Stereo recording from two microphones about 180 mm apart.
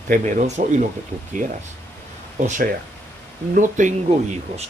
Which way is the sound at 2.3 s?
45° right (ahead or behind).